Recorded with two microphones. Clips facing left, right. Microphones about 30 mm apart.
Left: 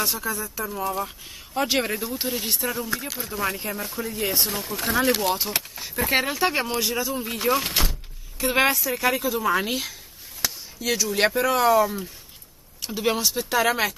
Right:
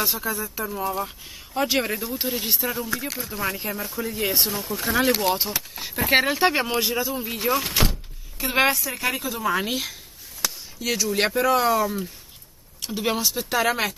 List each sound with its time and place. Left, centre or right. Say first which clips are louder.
0.1 s speech: right 1 dB; centre
4.6 s speech: right 1 dB; left
4.9 s speech: right 1 dB; centre
7.2 s speech: left 1 dB; centre